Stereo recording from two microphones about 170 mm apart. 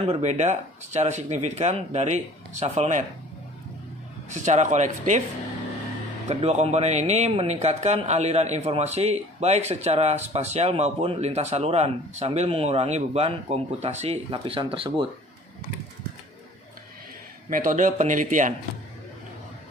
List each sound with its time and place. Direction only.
0.0 s speech: 40° right (ahead or behind)
4.3 s speech: 45° right (ahead or behind)
6.2 s speech: 40° right (ahead or behind)
17.5 s speech: 50° right (ahead or behind)